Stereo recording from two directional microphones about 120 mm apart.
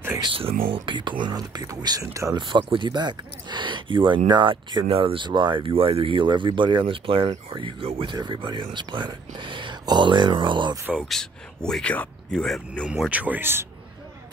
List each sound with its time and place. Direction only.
0.2 s speech: 50° right (ahead or behind); by 2.3 s 25° right (ahead or behind)
2.3 s speech: 40° right (ahead or behind)
11.1 s speech: 5° left (ahead or behind)
12.8 s speech: 5° right (ahead or behind)